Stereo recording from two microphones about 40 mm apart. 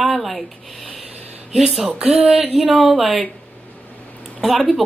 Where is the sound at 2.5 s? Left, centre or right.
Centre.